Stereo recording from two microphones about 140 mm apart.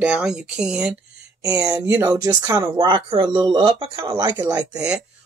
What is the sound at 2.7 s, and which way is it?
Speech, 40° right (ahead or behind).